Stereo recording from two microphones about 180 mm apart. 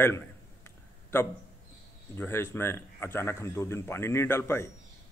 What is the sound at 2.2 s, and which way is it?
A man's voice, 10° left (ahead or behind).